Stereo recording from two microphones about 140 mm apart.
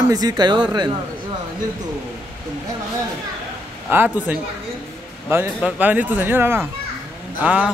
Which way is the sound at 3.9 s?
15° right (ahead or behind).